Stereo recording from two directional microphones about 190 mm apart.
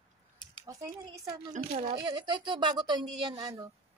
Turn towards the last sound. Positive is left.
turn(degrees=-20)  # may be behind; listen again after turning